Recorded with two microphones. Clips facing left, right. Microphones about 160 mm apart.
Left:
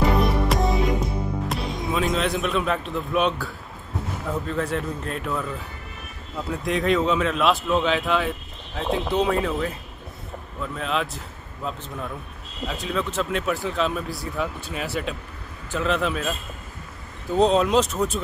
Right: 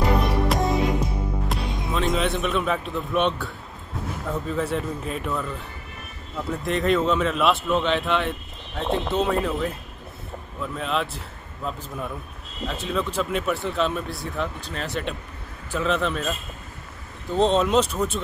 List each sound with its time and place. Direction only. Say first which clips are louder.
0.2 s music: left 1 dB; centre (ahead or behind)
1.5 s a man's voice: left 2 dB; centre (ahead or behind)
17.4 s a man's voice: left 1 dB; centre (ahead or behind)